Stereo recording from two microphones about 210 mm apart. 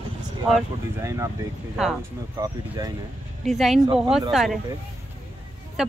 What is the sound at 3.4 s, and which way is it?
Speech, centre (ahead or behind).